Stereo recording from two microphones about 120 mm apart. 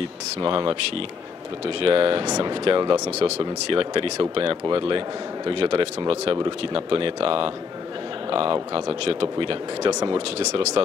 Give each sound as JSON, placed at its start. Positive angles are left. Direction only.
{"t": 0.5, "sound": "speech", "side_deg": -45}
{"t": 1.8, "sound": "speech", "side_deg": -50}
{"t": 3.1, "sound": "a man's voice", "side_deg": -60}
{"t": 9.8, "sound": "speech", "side_deg": -30}
{"t": 10.1, "sound": "speech", "side_deg": -60}